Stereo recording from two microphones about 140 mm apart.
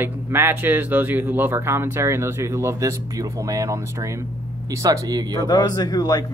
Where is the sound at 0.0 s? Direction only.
15° right (ahead or behind).